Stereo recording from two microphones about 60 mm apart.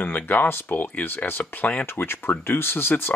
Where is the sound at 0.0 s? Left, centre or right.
Left.